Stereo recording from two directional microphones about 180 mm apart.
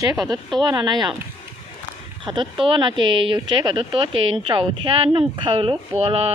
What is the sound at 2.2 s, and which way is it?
Speech, 30° right (ahead or behind).